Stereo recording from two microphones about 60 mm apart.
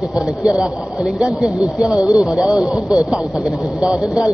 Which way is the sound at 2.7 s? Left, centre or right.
Centre.